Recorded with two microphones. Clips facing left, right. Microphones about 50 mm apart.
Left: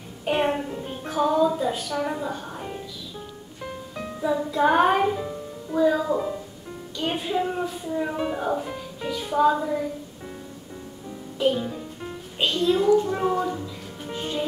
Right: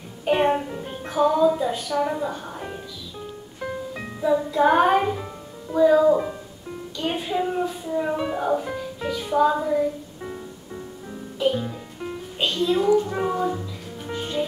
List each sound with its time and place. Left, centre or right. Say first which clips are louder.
0.2 s music: right 3 dB; centre
1.7 s speech: right 3 dB; centre
4.2 s speech: right 3 dB; centre
11.3 s speech: even; centre